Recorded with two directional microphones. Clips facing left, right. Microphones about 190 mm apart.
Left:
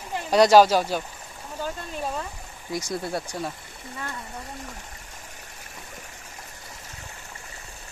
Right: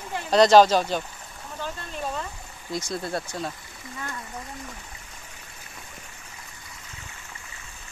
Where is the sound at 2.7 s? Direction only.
10° left (ahead or behind).